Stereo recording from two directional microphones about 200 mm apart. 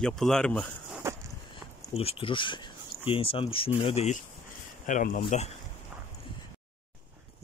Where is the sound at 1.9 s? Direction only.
30° left (ahead or behind).